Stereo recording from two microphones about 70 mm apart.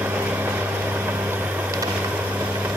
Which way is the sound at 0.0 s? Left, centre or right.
Right.